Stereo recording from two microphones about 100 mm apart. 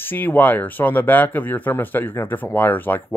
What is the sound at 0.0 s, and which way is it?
Speech, 20° left (ahead or behind).